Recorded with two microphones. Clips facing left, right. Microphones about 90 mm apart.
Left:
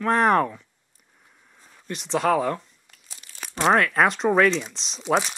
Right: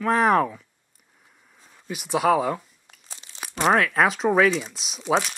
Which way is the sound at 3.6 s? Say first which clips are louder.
Even; centre (ahead or behind).